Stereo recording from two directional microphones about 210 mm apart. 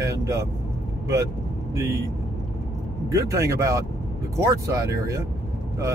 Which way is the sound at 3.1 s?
15° right (ahead or behind).